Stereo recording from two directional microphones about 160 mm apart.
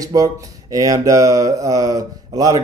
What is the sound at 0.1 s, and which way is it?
Speech, 20° right (ahead or behind).